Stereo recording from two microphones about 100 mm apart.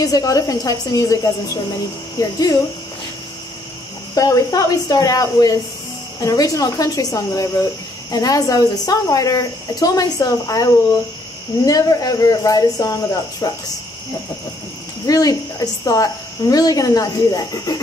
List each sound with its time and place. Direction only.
0.0 s speech: 35° left (ahead or behind)
4.1 s speech: 35° left (ahead or behind)
15.0 s speech: 40° left (ahead or behind)